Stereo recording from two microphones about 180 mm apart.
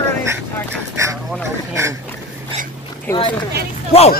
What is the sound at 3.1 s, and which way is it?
Speech, 25° left (ahead or behind).